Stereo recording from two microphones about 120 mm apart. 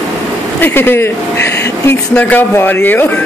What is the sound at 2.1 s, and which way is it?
Speech, 15° left (ahead or behind).